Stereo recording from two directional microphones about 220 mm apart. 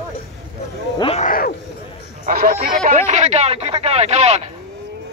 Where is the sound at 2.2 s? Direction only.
40° right (ahead or behind).